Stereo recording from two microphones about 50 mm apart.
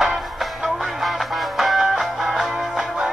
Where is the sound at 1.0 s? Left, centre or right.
Centre.